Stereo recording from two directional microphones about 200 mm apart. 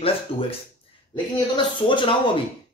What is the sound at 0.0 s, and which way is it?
A man's voice, 30° left (ahead or behind).